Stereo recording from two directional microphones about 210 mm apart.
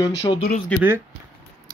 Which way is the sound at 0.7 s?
5° left (ahead or behind).